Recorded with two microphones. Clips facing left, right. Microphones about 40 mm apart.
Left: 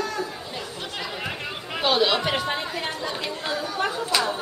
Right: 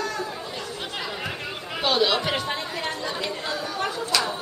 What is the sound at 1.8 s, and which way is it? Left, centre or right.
Chatter, centre.